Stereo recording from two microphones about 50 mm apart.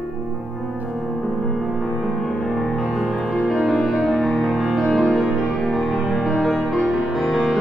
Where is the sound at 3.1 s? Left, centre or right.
Centre.